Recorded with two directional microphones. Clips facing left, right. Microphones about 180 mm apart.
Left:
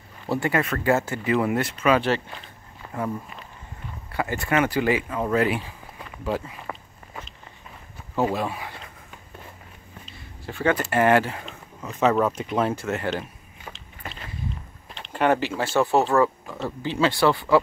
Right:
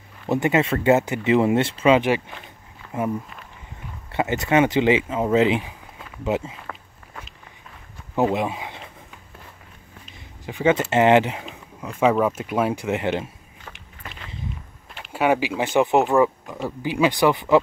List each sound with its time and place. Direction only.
0.3 s speech: 20° right (ahead or behind)
2.0 s speech: 15° right (ahead or behind)
4.1 s speech: 20° right (ahead or behind)
8.2 s speech: 20° right (ahead or behind)
10.4 s speech: 15° right (ahead or behind)
15.0 s speech: 10° right (ahead or behind)